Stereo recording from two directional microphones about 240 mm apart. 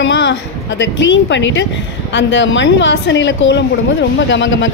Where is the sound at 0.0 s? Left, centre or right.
Left.